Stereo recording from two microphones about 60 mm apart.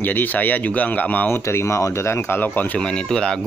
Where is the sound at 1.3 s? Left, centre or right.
Left.